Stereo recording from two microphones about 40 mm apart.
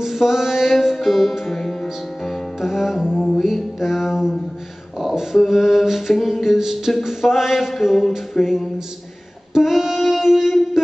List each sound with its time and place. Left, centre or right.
0.0 s music: centre
5.3 s music: centre
7.0 s mantra: centre
8.3 s music: centre
9.5 s music: centre